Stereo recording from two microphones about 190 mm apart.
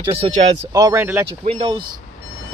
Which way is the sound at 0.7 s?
15° right (ahead or behind).